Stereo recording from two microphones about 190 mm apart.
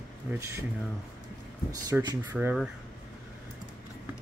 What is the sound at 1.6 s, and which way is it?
Speech, 20° right (ahead or behind).